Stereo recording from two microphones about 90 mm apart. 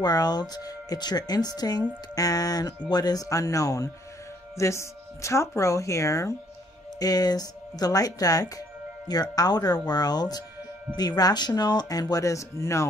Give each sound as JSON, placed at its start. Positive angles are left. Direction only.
{"t": 0.0, "sound": "speech", "side_deg": 50}